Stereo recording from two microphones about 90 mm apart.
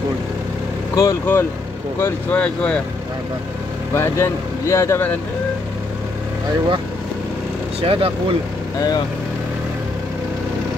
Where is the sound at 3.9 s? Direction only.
30° left (ahead or behind).